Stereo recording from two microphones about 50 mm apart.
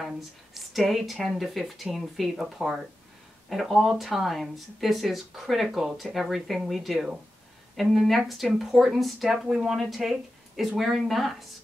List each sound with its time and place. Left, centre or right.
0.6 s speech: centre